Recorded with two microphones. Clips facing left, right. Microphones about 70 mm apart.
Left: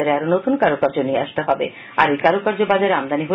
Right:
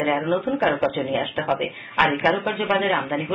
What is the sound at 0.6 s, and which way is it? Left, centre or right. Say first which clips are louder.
Speech: left 4 dB; left.